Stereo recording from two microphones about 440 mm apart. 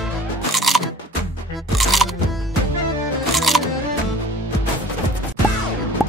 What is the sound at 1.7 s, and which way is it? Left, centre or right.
Music, centre.